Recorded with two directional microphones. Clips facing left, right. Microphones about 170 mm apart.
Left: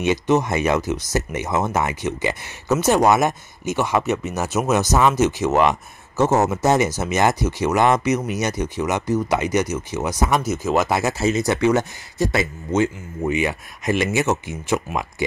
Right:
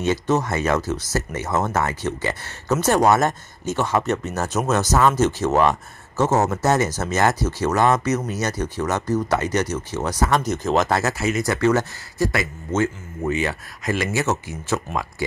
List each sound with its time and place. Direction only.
0.0 s speech: 15° left (ahead or behind)
11.1 s speech: 25° left (ahead or behind)